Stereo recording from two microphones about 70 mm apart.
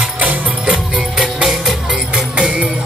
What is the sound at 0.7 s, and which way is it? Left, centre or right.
Music, centre.